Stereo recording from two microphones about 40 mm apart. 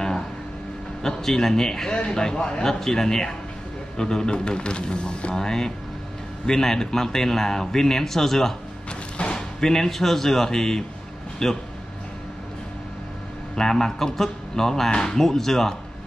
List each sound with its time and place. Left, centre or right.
1.0 s a man's voice: centre; by 5.3 s left
5.3 s a man's voice: centre
13.6 s a man's voice: centre